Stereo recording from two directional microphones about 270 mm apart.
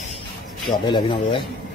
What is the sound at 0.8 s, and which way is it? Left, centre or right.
Speech, centre.